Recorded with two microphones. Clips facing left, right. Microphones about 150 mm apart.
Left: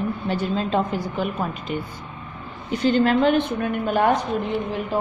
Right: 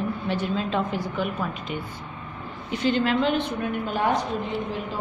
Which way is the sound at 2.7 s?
45° left (ahead or behind).